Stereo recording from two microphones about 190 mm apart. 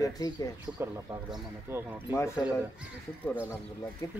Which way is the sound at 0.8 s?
15° right (ahead or behind).